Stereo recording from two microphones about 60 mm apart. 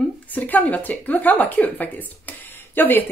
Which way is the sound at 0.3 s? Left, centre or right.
Left.